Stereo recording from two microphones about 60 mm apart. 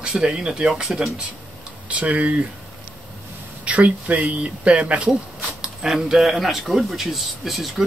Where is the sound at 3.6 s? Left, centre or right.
Right.